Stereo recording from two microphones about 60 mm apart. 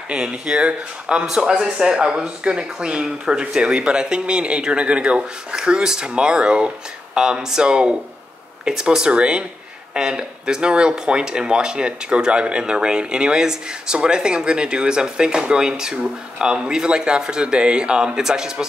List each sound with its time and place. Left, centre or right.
0.1 s speech: centre